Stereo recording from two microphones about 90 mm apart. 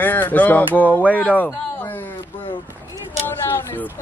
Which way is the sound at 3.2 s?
25° left (ahead or behind).